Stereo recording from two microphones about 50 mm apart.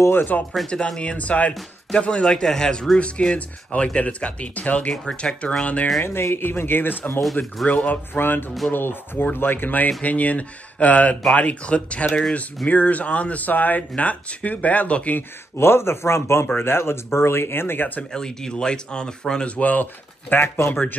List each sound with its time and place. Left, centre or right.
0.1 s speech: left
0.7 s speech: centre
1.1 s speech: left
6.3 s speech: left
7.6 s speech: left
8.1 s speech: left
15.1 s speech: left
18.1 s speech: centre
19.5 s speech: left
20.4 s speech: left